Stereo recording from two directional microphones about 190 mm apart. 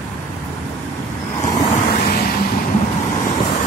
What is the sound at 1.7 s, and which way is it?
Vehicle, 50° left (ahead or behind).